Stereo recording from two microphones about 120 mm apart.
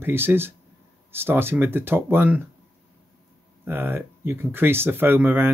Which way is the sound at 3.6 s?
15° right (ahead or behind).